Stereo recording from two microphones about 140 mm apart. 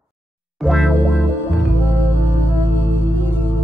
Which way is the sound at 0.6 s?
Centre (ahead or behind).